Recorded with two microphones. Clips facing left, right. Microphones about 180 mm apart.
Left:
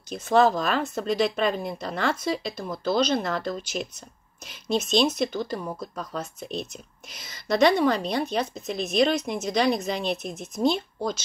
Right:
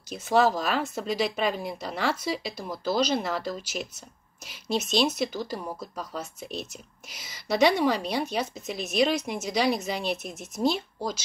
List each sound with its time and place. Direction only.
0.1 s speech: 10° right (ahead or behind)